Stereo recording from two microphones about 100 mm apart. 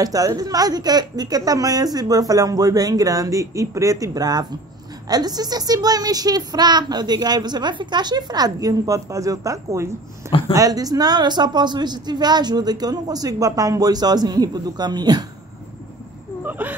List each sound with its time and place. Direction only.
0.0 s a woman's voice: 35° right (ahead or behind)
16.4 s whimper: 15° right (ahead or behind)